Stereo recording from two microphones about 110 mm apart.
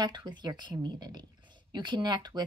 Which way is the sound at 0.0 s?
45° right (ahead or behind).